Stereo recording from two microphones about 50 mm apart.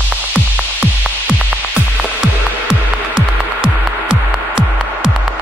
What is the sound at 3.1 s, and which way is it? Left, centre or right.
Music, centre.